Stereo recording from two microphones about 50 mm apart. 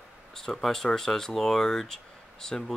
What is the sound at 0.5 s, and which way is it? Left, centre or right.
Speech, centre.